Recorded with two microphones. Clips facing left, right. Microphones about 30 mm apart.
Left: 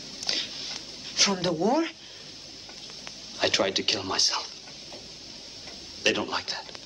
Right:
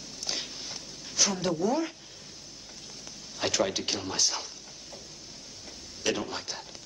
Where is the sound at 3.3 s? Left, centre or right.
Left.